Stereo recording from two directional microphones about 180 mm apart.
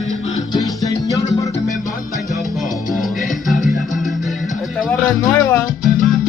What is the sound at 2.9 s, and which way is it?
Music, centre (ahead or behind).